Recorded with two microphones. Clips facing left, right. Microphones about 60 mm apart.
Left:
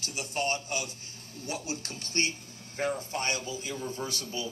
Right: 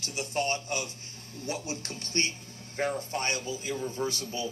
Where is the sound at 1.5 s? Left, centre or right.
Right.